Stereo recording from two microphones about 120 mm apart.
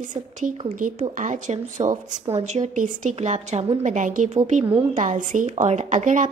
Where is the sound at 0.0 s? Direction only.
90° right.